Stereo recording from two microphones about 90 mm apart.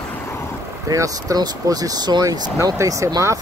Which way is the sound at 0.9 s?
40° right (ahead or behind).